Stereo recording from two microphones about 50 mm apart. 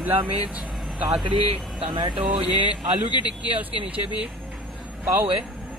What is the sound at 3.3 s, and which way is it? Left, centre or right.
Speech, right.